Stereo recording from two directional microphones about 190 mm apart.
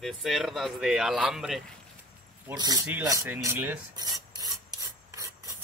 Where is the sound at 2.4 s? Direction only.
20° right (ahead or behind).